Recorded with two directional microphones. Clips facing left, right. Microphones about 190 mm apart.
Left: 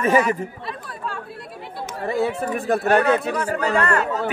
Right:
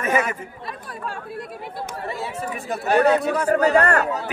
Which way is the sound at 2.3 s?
55° left (ahead or behind).